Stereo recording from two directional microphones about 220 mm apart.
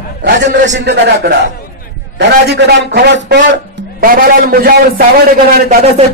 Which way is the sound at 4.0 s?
40° right (ahead or behind).